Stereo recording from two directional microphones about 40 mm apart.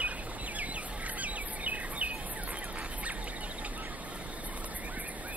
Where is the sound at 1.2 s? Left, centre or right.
Right.